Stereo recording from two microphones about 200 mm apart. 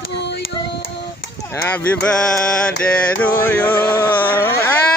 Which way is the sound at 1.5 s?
10° left (ahead or behind).